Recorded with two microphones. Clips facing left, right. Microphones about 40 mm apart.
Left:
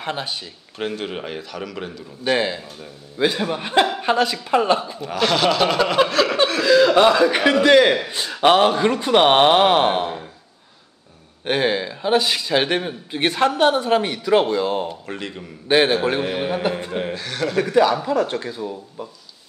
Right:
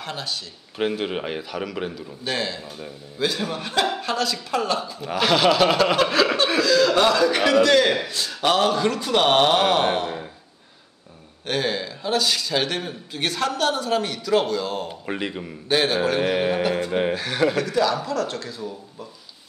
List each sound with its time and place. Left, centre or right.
0.0 s speech: left
0.7 s a man's voice: centre
2.2 s speech: centre
5.0 s speech: centre
6.0 s chuckle: centre
6.6 s a man's voice: centre
11.4 s speech: left
14.9 s a man's voice: centre
15.7 s speech: centre
16.2 s speech: centre
16.9 s a man's voice: centre
18.0 s speech: centre